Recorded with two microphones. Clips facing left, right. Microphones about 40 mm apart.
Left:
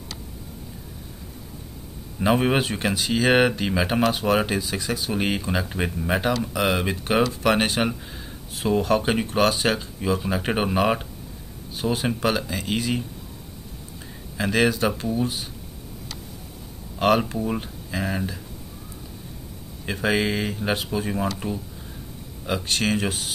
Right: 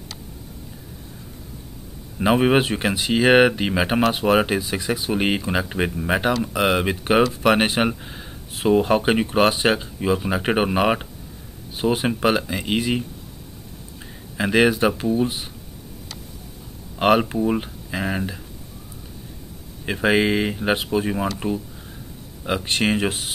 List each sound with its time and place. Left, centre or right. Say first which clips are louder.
2.1 s speech: right 3 dB; centre
14.3 s speech: right 4 dB; centre
17.0 s speech: right 3 dB; centre
19.9 s speech: right 4 dB; right
22.7 s speech: right 3 dB; right